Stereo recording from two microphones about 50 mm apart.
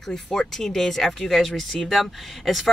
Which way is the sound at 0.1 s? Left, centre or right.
Centre.